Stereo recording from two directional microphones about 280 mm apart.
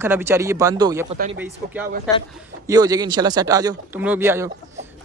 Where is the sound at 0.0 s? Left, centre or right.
Centre.